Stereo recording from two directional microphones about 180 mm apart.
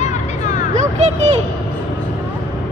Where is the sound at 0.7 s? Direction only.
40° right (ahead or behind).